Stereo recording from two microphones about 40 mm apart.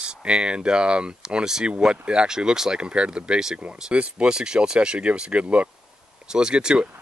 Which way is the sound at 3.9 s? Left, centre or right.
Right.